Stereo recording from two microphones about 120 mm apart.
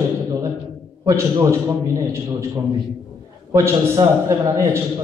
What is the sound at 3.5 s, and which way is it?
A man's voice, 25° right (ahead or behind).